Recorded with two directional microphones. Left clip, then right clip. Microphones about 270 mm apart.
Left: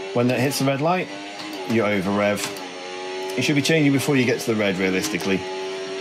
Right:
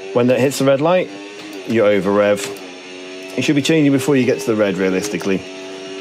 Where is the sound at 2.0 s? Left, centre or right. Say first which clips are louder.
Right 7 dB; right.